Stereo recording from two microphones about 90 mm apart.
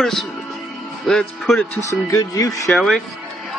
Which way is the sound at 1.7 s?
35° left (ahead or behind).